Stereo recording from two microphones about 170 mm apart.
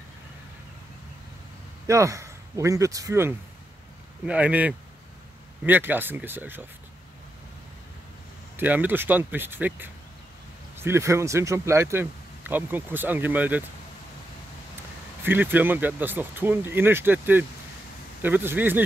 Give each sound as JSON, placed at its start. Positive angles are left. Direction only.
{"t": 1.9, "sound": "speech", "side_deg": -15}
{"t": 8.5, "sound": "speech", "side_deg": -10}
{"t": 15.2, "sound": "speech", "side_deg": -10}